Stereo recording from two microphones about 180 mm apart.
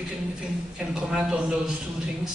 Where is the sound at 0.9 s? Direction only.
5° right (ahead or behind).